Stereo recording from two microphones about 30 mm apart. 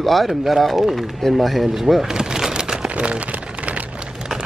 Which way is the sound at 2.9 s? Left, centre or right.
Right.